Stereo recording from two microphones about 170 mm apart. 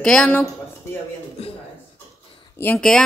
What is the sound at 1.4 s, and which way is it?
Speech, 35° left (ahead or behind).